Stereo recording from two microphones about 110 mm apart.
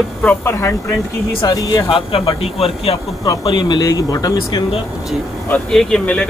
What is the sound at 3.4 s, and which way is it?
Speech, 45° left (ahead or behind).